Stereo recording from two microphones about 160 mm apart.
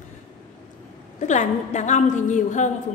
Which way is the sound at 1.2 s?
50° left (ahead or behind).